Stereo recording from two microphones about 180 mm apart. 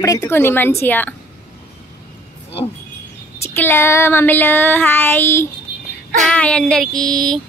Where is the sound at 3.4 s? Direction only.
15° left (ahead or behind).